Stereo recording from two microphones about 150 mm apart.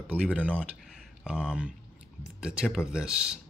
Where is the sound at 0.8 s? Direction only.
5° right (ahead or behind).